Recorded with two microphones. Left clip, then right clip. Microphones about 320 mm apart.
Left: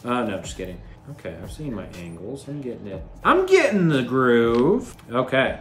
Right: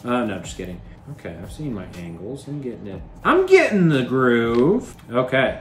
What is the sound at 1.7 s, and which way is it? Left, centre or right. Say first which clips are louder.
Speech: right 1 dB; centre.